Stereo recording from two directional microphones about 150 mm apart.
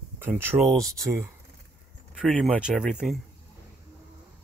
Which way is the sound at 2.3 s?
5° left (ahead or behind).